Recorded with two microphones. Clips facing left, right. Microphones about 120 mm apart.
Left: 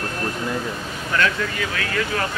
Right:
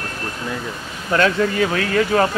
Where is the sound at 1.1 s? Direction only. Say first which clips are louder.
Right 6 dB; 35° right (ahead or behind).